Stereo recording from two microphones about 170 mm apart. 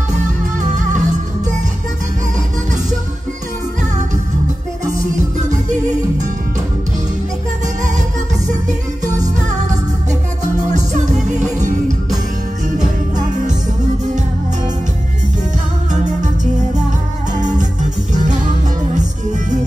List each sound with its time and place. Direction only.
0.6 s music: 45° right (ahead or behind)
5.5 s music: 45° right (ahead or behind)
8.5 s music: 45° right (ahead or behind)
10.7 s music: 45° right (ahead or behind)
17.4 s music: 45° right (ahead or behind)